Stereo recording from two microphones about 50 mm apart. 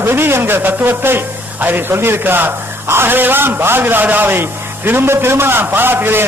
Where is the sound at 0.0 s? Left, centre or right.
Right.